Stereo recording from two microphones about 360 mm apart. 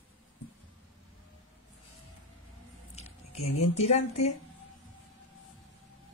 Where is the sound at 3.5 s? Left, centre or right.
Left.